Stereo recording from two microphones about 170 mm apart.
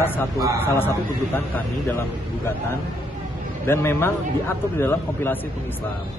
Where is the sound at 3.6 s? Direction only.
15° left (ahead or behind).